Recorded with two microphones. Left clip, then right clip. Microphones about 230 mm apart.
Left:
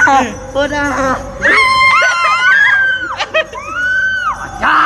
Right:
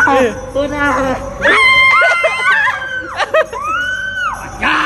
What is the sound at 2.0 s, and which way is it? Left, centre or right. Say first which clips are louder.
Music: even; right.